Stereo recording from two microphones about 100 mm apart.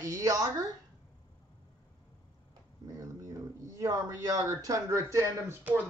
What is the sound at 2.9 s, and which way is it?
Speech, 35° right (ahead or behind).